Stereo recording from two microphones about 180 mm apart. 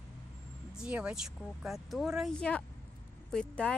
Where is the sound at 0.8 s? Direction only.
5° right (ahead or behind).